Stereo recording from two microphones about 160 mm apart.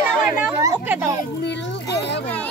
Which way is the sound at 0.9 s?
15° right (ahead or behind).